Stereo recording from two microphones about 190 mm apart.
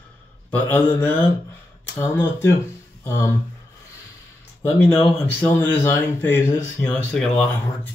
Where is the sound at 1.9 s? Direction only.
15° left (ahead or behind).